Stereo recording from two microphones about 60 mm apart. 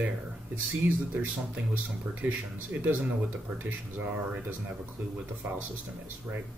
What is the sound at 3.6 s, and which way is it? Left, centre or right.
Speech, right.